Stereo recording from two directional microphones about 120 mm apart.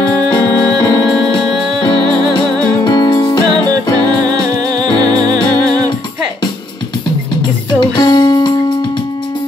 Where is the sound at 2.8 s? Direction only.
35° left (ahead or behind).